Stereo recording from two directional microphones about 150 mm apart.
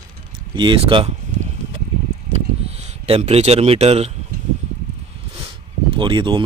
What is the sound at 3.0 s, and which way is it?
Speech, 45° right (ahead or behind).